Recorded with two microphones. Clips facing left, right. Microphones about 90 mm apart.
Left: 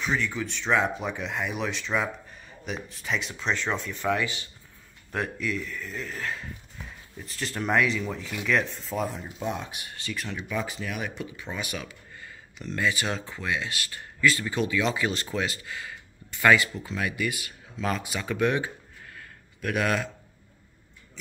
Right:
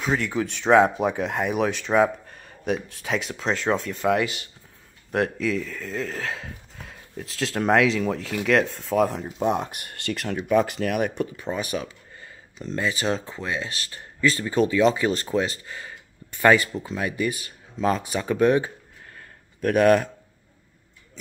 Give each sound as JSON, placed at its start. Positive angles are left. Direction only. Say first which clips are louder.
{"t": 0.0, "sound": "speech", "louder": "right 4 dB", "side_deg": -40}
{"t": 3.4, "sound": "speech", "louder": "right 5 dB", "side_deg": -40}
{"t": 5.1, "sound": "speech", "louder": "right 6 dB", "side_deg": -80}
{"t": 11.4, "sound": "speech", "louder": "right 7 dB", "side_deg": -35}
{"t": 19.1, "sound": "a sound", "louder": "even", "side_deg": -45}